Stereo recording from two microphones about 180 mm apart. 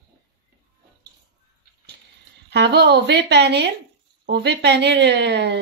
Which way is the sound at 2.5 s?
70° right (ahead or behind).